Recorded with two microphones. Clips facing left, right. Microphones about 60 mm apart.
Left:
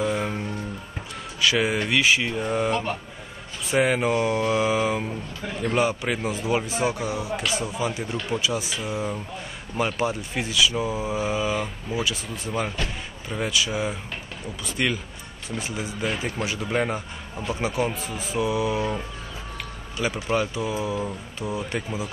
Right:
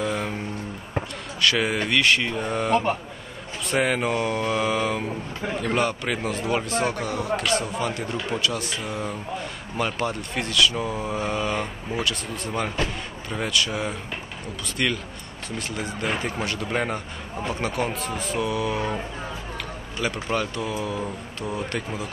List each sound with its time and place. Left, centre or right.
0.0 s music: centre
1.4 s speech: centre
2.7 s speech: right
3.6 s speech: centre
20.2 s speech: centre